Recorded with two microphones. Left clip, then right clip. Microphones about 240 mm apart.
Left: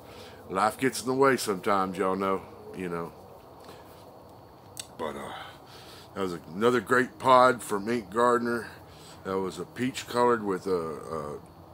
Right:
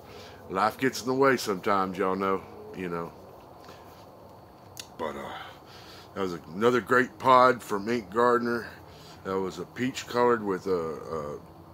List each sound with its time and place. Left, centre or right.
0.5 s speech: centre
4.7 s speech: centre